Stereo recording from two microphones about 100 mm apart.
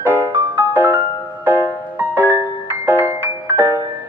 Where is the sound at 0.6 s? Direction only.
20° right (ahead or behind).